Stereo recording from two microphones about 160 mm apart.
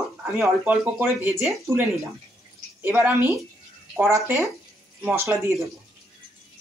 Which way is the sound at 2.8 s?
15° right (ahead or behind).